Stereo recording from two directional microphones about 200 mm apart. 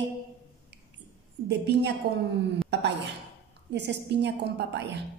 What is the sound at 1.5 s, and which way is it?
A woman's voice, 55° right (ahead or behind).